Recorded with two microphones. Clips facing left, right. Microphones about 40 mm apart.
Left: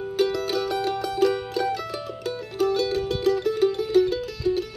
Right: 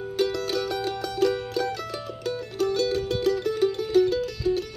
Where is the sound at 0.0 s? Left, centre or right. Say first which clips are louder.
Left 2 dB; centre.